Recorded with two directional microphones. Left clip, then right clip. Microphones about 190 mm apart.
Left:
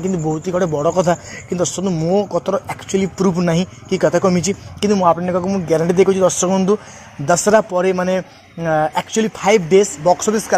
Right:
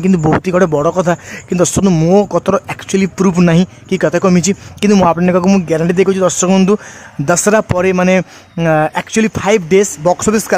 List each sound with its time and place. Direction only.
0.5 s a man's voice: 35° right (ahead or behind)
0.9 s a man's voice: 20° right (ahead or behind)
1.6 s speech: 40° right (ahead or behind)
2.3 s a man's voice: 30° right (ahead or behind)
5.7 s a man's voice: 20° right (ahead or behind)
6.5 s a man's voice: 35° right (ahead or behind)